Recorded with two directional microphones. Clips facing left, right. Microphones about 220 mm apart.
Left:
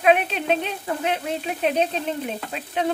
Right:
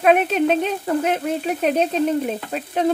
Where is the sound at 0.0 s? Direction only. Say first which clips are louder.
Right 4 dB; 45° right (ahead or behind).